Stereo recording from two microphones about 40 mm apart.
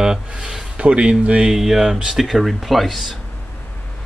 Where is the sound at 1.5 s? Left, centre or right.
Centre.